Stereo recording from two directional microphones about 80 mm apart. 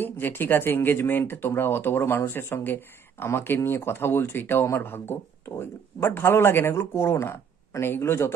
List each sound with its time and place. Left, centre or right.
0.0 s speech: left